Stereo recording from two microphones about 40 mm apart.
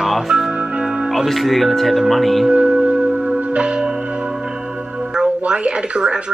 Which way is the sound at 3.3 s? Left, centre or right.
Right.